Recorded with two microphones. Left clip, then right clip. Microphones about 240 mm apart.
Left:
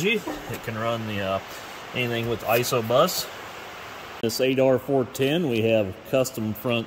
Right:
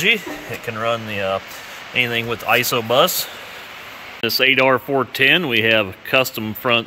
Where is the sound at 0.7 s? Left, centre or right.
Right.